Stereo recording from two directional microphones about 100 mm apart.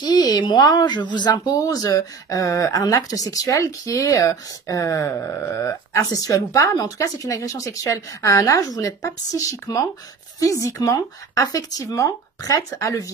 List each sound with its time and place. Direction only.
0.0 s speech: 40° left (ahead or behind)